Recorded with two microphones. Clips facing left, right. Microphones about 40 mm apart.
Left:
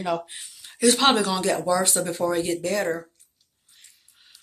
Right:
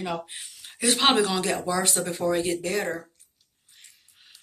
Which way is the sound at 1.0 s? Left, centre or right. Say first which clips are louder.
Left 1 dB; right.